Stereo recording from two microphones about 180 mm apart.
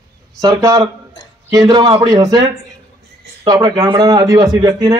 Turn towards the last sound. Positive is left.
turn(degrees=-20)  # may be behind; listen again after turning